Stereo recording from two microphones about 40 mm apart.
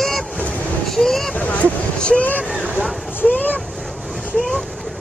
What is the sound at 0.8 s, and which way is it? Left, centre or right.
Vehicle, centre.